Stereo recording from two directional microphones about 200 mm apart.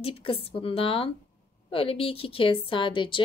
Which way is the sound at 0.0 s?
30° left (ahead or behind).